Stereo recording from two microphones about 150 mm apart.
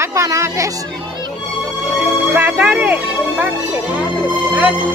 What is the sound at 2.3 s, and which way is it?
Speech, 10° right (ahead or behind).